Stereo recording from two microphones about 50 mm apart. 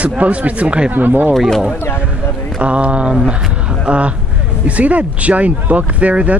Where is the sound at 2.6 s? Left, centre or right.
Right.